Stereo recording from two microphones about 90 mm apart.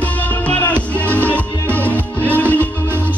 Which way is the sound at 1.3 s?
20° left (ahead or behind).